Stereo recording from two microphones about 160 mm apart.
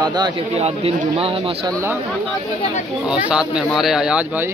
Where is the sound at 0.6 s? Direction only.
40° right (ahead or behind).